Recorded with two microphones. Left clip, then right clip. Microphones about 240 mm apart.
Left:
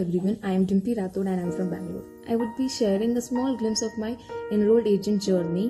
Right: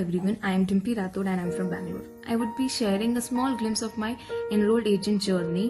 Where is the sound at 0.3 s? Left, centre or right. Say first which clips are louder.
Left 1 dB; right.